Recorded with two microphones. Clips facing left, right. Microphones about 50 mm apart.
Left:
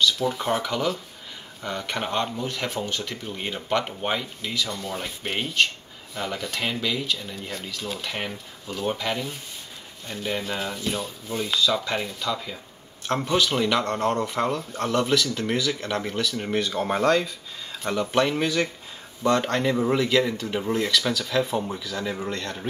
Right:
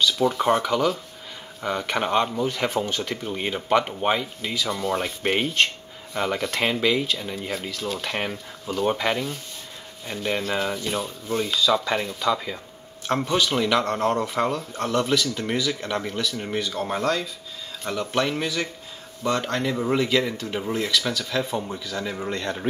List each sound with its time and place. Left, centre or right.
0.2 s speech: centre; by 7.0 s right
7.3 s speech: centre
8.9 s speech: centre
10.1 s speech: centre